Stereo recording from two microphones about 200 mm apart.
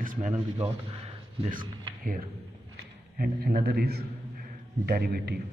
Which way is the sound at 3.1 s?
50° right (ahead or behind).